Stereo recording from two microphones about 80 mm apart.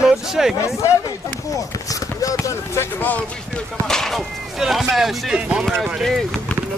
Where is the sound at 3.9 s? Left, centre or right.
Centre.